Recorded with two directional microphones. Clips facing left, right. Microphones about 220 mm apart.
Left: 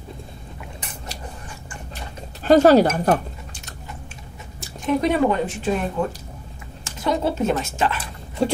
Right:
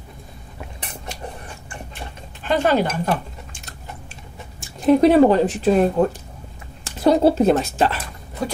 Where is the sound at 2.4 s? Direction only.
40° left (ahead or behind).